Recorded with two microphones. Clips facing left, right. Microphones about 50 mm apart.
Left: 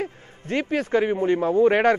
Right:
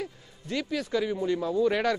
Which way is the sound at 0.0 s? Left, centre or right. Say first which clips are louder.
Left 6 dB; left.